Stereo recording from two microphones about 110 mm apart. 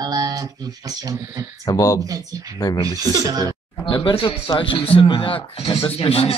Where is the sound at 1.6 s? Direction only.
30° left (ahead or behind).